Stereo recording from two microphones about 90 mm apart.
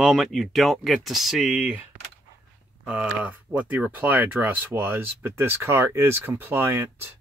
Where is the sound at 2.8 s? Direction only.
15° right (ahead or behind).